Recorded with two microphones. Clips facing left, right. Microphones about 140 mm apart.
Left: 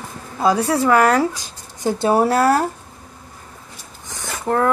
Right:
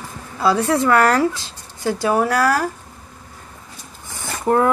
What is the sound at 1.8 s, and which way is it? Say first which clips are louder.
Speech: left 2 dB; 20° left (ahead or behind).